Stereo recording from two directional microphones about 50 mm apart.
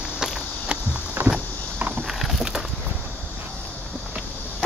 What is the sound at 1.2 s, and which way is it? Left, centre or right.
Vehicle, right.